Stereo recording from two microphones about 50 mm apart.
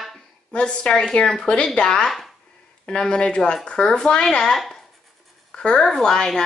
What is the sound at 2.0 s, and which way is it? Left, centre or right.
Speech, centre.